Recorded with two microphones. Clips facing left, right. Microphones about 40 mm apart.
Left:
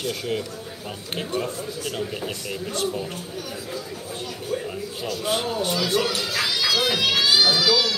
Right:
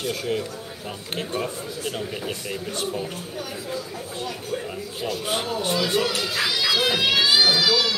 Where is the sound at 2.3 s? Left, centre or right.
Centre.